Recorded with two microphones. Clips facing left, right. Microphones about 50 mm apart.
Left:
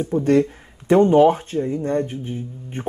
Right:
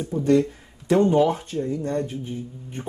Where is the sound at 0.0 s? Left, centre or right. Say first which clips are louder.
Left 2 dB; left.